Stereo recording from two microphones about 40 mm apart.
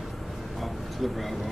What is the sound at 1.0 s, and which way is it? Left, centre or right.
Speech, centre.